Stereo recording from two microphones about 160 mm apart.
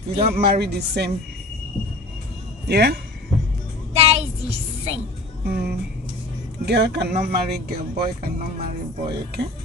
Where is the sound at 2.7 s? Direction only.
90° right.